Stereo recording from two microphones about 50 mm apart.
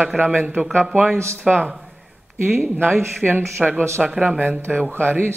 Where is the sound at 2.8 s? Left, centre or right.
Right.